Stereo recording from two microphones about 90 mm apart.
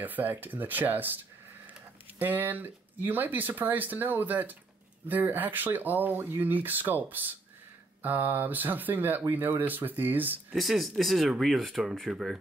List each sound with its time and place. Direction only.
0.0 s speech: 20° right (ahead or behind)
10.5 s speech: centre (ahead or behind)